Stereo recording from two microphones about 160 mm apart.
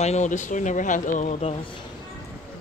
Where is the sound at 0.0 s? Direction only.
45° left (ahead or behind).